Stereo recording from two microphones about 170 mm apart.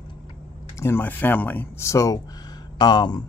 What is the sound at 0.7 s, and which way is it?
Speech, 15° left (ahead or behind).